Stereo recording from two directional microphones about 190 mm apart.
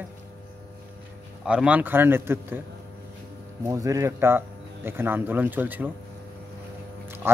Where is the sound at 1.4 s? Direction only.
5° right (ahead or behind).